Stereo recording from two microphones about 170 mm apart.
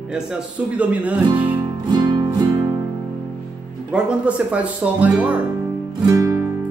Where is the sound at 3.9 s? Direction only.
5° right (ahead or behind).